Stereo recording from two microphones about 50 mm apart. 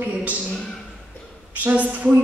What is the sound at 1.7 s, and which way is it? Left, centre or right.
Speech, right.